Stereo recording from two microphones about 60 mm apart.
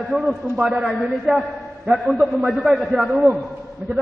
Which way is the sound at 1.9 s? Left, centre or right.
Right.